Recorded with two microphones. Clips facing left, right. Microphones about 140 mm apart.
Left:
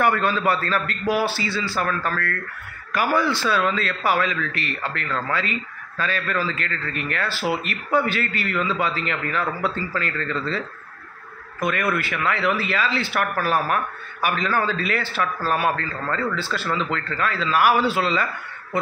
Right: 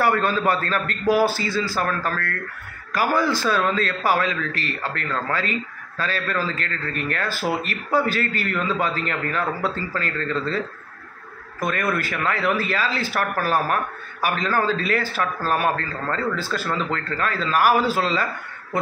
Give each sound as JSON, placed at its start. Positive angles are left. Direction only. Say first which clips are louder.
{"t": 0.0, "sound": "a man's voice", "louder": "even", "side_deg": -40}
{"t": 11.6, "sound": "a man's voice", "louder": "even", "side_deg": -40}